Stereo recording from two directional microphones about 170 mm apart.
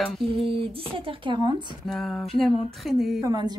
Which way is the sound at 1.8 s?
Centre (ahead or behind).